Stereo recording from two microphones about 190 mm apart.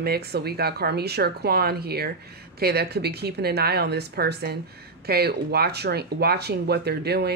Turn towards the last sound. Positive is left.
turn(degrees=-60)  # may be behind; listen again after turning